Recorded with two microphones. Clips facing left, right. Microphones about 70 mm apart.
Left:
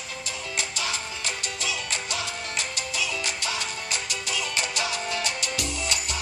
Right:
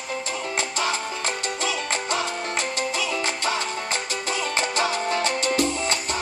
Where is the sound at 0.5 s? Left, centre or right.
Right.